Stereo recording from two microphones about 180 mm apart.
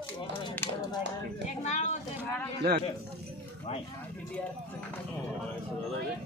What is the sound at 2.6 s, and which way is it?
Speech, 65° right (ahead or behind).